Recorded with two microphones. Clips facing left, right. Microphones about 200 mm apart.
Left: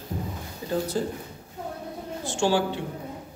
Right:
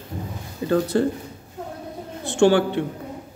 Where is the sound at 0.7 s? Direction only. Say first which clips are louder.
Right 7 dB; 70° right (ahead or behind).